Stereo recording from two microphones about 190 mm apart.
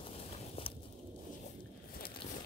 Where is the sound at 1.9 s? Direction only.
50° left (ahead or behind).